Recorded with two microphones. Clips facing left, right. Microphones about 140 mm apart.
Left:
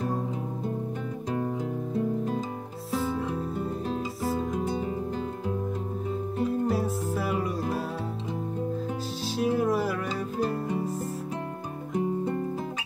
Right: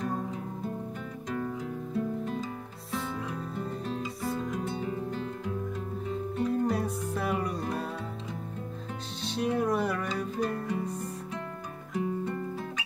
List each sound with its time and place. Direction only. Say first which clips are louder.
2.9 s music: left 6 dB; centre (ahead or behind)
4.4 s music: left 4 dB; 30° left (ahead or behind)
6.4 s music: left 1 dB; 5° left (ahead or behind)
9.2 s music: left 2 dB; 5° left (ahead or behind)
10.5 s music: left 3 dB; 30° left (ahead or behind)
11.9 s music: left 4 dB; 30° left (ahead or behind)